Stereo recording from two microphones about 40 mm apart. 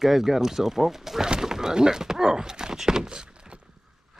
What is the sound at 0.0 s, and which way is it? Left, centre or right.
Speech, centre.